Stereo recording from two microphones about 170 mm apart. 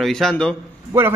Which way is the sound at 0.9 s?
15° right (ahead or behind).